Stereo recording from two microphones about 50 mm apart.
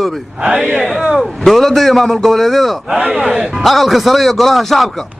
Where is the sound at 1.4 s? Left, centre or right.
Centre.